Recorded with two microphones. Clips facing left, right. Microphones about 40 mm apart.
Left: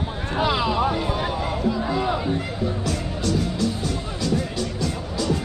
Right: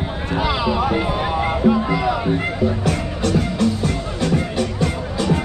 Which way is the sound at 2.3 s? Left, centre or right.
Right.